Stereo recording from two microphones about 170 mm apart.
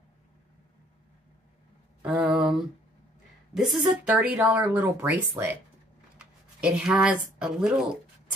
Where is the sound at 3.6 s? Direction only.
Centre (ahead or behind).